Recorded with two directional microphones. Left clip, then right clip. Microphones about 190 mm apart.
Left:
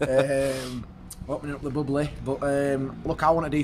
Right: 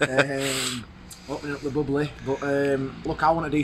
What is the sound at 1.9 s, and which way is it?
Speech, 25° left (ahead or behind).